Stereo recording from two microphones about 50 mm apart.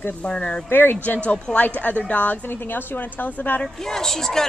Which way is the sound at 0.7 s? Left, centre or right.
Left.